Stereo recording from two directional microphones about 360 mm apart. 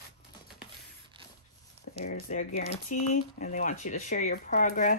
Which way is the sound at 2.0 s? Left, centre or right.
Left.